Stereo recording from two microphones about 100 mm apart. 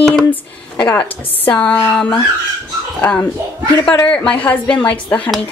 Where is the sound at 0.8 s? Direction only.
20° left (ahead or behind).